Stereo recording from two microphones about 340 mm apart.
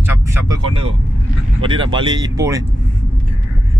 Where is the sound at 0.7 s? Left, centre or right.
Right.